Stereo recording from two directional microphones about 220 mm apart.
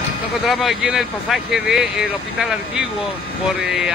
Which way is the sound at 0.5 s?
Centre (ahead or behind).